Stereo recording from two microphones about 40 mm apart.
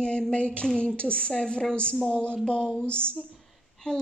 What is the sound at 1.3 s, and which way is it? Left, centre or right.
Speech, centre.